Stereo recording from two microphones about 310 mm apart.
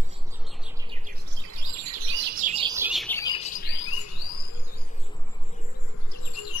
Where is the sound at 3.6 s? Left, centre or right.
Left.